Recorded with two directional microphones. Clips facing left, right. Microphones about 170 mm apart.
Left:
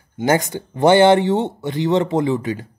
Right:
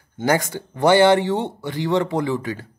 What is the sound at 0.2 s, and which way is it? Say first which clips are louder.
Speech: left 2 dB; 20° left (ahead or behind).